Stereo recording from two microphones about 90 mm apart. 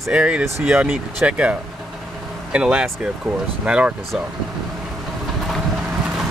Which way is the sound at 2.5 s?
10° right (ahead or behind).